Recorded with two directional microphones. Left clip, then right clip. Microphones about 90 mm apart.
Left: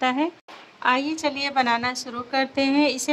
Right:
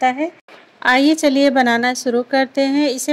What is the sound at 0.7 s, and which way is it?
A woman's voice, 70° right (ahead or behind).